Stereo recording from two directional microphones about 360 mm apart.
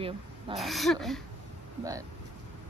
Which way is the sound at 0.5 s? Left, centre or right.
Centre.